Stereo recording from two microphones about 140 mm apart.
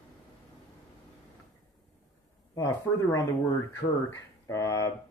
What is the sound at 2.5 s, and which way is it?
Speech, 25° left (ahead or behind).